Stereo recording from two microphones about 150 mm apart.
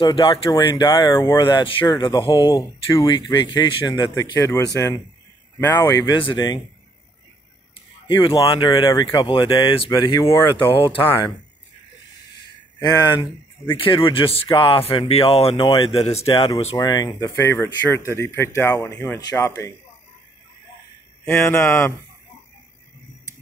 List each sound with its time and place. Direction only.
0.0 s speech: 35° left (ahead or behind)
8.1 s speech: 35° left (ahead or behind)
12.8 s speech: 25° left (ahead or behind)
16.7 s speech: 25° left (ahead or behind)
21.3 s speech: 15° left (ahead or behind)